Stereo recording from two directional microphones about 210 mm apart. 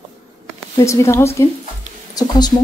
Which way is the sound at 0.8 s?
15° left (ahead or behind).